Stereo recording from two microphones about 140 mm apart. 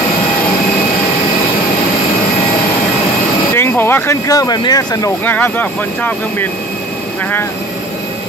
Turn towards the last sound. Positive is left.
turn(degrees=10)  # may be behind; listen again after turning